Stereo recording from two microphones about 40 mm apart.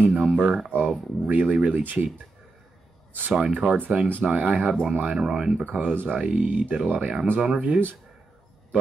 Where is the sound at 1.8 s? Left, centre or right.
Right.